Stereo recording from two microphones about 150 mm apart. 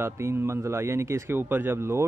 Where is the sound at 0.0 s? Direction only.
15° right (ahead or behind).